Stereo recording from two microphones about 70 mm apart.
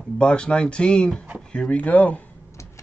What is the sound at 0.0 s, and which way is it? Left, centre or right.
Speech, centre.